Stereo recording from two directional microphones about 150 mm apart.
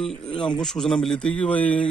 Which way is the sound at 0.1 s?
35° left (ahead or behind).